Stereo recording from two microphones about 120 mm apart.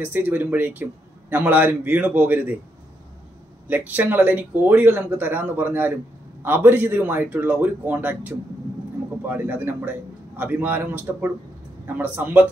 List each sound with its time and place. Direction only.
0.0 s speech: 15° right (ahead or behind)
3.6 s speech: 15° right (ahead or behind)
9.3 s speech: 15° right (ahead or behind)